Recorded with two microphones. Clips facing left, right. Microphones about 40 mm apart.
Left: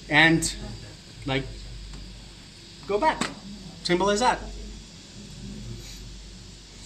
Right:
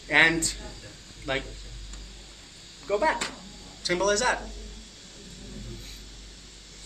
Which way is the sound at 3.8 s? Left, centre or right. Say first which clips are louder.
Left 3 dB; left.